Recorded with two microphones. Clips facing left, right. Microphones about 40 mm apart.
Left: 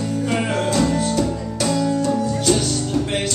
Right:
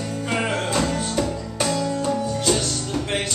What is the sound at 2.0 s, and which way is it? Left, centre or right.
Music, centre.